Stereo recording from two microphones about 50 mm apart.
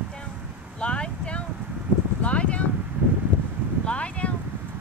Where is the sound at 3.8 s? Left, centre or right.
Left.